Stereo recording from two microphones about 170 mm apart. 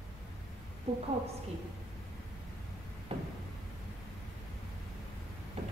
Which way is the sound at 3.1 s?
35° right (ahead or behind).